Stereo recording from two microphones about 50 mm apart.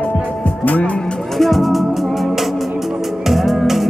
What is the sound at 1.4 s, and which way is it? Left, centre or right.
Music, centre.